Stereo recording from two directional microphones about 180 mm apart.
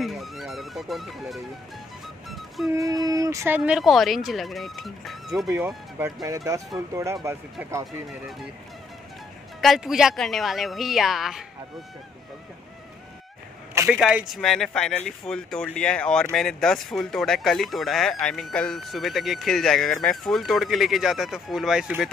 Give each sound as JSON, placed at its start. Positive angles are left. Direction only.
{"t": 0.0, "sound": "music", "side_deg": 0}
{"t": 2.7, "sound": "speech", "side_deg": -20}
{"t": 6.2, "sound": "speech", "side_deg": -20}
{"t": 9.6, "sound": "speech", "side_deg": 0}
{"t": 13.9, "sound": "speech", "side_deg": 0}